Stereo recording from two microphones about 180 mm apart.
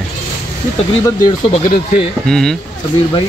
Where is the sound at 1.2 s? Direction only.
30° left (ahead or behind).